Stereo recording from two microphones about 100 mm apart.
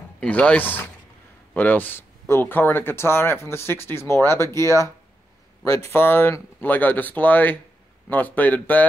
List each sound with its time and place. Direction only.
0.2 s speech: 10° left (ahead or behind); by 4.8 s 30° left (ahead or behind)
5.9 s speech: 20° left (ahead or behind)